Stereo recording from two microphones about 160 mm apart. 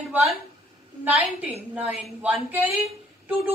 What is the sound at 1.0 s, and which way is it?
A woman's voice, 10° right (ahead or behind).